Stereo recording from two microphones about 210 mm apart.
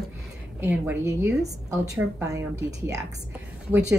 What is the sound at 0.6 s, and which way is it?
Speech, 10° right (ahead or behind).